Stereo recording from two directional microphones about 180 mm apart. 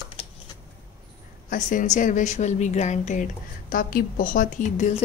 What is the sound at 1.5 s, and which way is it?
Speech, 45° left (ahead or behind).